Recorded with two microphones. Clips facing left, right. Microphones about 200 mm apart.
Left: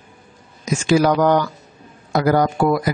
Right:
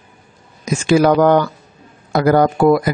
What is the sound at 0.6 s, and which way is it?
Speech, 55° right (ahead or behind).